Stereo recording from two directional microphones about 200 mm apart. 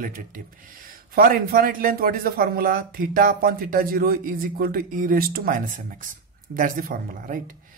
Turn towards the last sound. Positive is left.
turn(degrees=-45)  # may be behind; listen again after turning